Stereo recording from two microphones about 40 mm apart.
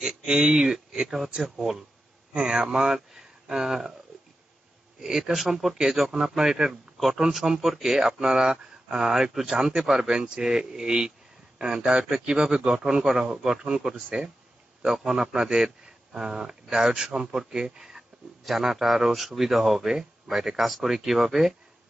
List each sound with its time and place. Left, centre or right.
0.3 s speech: right
0.7 s a sound: centre
1.4 s speech: centre
2.3 s speech: centre
5.0 s speech: centre
5.8 s a man's voice: centre
14.9 s a man's voice: centre